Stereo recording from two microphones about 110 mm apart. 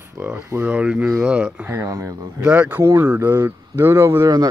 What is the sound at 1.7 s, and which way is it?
Speech, 25° right (ahead or behind).